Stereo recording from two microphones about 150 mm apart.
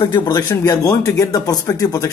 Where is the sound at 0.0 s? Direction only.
30° left (ahead or behind).